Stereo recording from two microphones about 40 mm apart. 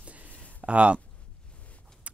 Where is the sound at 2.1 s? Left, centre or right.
Right.